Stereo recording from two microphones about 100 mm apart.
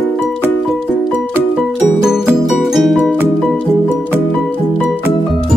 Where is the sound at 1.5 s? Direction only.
5° right (ahead or behind).